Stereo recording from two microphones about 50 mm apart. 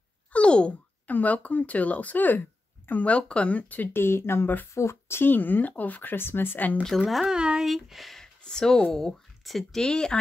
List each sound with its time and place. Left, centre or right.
0.3 s wail: left
1.0 s speech: left
3.9 s speech: left
4.7 s speech: left
5.3 s speech: left
6.1 s speech: left
7.0 s speech: centre
7.3 s speech: centre
7.6 s speech: centre
8.2 s a sound: centre
8.9 s speech: centre